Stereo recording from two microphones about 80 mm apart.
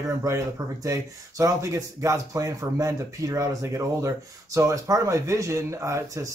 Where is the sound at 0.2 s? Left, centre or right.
Right.